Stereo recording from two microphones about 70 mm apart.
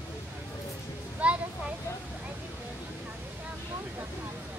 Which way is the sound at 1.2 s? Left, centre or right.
Centre.